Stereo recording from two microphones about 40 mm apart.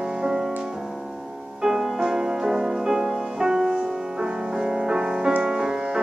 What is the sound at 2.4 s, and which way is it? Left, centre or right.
Music, centre.